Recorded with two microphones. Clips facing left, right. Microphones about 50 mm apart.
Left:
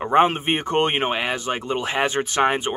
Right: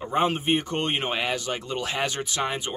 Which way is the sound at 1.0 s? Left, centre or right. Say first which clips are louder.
Left 4 dB; left.